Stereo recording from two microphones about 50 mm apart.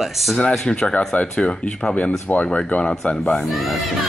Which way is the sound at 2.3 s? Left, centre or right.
Left.